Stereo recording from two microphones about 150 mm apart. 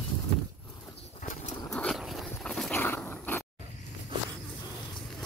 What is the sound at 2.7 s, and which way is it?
Dog, 15° left (ahead or behind).